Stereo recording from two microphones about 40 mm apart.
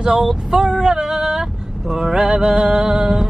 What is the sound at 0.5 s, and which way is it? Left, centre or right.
Speech, centre.